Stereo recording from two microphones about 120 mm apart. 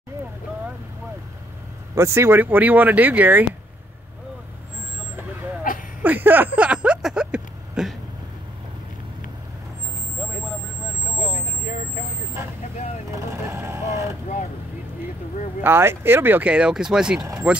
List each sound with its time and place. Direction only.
2.0 s speech: 25° right (ahead or behind)
6.0 s a sound: 15° right (ahead or behind)
13.5 s vehicle: 25° right (ahead or behind)
15.6 s speech: 20° right (ahead or behind)